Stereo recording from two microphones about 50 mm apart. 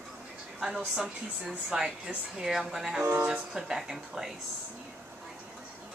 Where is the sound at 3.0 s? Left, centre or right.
Right.